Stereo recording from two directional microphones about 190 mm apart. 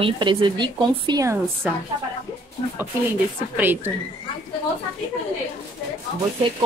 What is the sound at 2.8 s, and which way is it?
Speech, 10° right (ahead or behind).